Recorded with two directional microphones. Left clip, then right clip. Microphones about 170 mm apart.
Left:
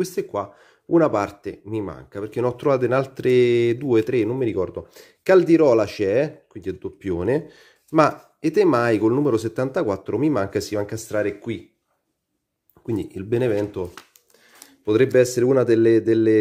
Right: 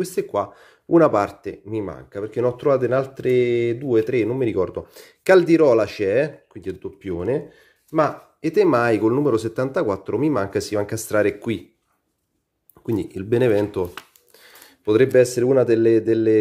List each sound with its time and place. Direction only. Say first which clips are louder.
0.0 s speech: right 2 dB; 5° left (ahead or behind); by 4.0 s 30° left (ahead or behind)
4.0 s speech: right 1 dB; 10° left (ahead or behind)
4.4 s speech: right 2 dB; centre (ahead or behind); by 8.1 s 30° left (ahead or behind)
8.4 s speech: right 1 dB; 15° left (ahead or behind)
10.9 s speech: right 4 dB; 15° right (ahead or behind)
12.8 s speech: right 2 dB; 10° right (ahead or behind)
14.9 s speech: right 1 dB; 5° left (ahead or behind)